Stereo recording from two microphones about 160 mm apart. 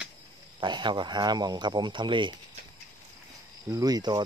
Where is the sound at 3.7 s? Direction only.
25° right (ahead or behind).